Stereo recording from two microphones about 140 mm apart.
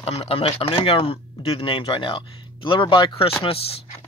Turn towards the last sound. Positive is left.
turn(degrees=45)  # may be behind; listen again after turning